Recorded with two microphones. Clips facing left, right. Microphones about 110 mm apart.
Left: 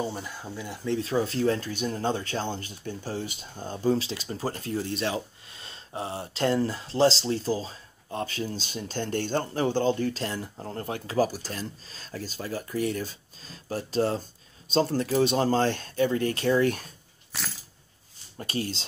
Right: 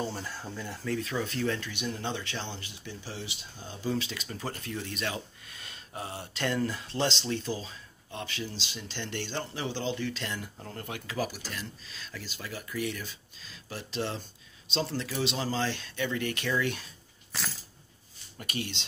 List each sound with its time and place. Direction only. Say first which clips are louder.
0.0 s speech: left 3 dB; 15° left (ahead or behind)
0.8 s speech: left 6 dB; 30° left (ahead or behind)
17.3 s coin: even; 5° left (ahead or behind)
18.4 s speech: left 5 dB; 35° left (ahead or behind)